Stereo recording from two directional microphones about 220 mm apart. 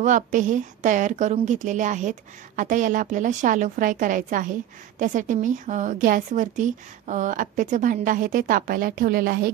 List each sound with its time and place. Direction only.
0.0 s a woman's voice: 35° right (ahead or behind)